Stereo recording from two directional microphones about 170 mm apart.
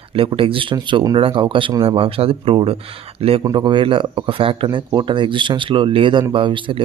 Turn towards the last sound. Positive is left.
turn(degrees=-30)  # may be behind; listen again after turning